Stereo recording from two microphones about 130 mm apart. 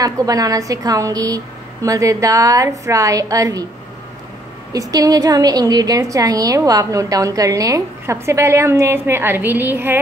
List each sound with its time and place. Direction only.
0.0 s a woman's voice: 30° right (ahead or behind)
4.7 s a woman's voice: 30° right (ahead or behind)